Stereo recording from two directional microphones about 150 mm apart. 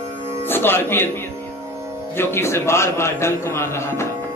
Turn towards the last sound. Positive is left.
turn(degrees=20)  # may be behind; listen again after turning